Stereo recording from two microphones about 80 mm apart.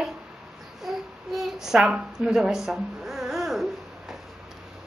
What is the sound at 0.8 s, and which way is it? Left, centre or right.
Babbling, centre.